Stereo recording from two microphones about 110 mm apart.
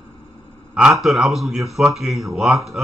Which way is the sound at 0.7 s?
5° right (ahead or behind).